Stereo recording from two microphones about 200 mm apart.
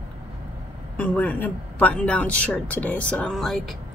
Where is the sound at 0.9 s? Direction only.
5° left (ahead or behind).